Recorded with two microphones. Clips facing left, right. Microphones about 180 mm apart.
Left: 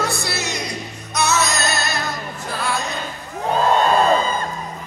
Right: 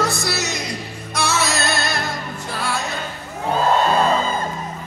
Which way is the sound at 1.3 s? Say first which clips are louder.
Even; 30° right (ahead or behind).